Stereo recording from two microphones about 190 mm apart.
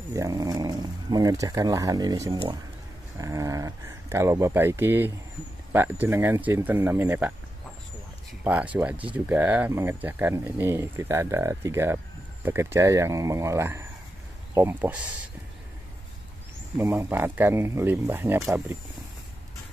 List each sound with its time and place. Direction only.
0.1 s speech: 20° right (ahead or behind)
8.5 s speech: 10° right (ahead or behind)
16.7 s speech: 15° right (ahead or behind)